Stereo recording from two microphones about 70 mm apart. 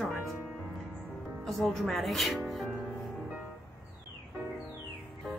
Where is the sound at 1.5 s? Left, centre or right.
Centre.